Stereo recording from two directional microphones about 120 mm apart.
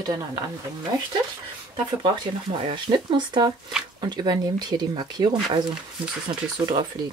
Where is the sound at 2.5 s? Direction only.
45° right (ahead or behind).